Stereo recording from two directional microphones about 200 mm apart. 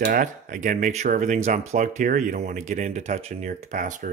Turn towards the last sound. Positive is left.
turn(degrees=-40)  # may be behind; listen again after turning